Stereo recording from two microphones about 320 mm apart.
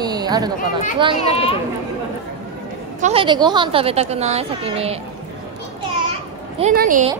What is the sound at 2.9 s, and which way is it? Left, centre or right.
A woman's voice, centre.